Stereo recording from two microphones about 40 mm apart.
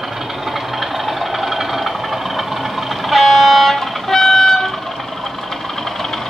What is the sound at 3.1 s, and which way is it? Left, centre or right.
Music, centre.